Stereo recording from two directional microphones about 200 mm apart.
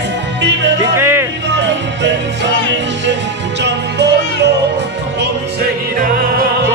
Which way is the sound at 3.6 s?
60° right (ahead or behind).